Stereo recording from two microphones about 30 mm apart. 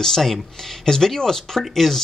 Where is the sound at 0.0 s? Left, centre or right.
Centre.